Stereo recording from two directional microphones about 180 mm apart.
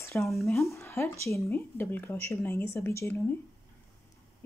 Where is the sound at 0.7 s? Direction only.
15° left (ahead or behind).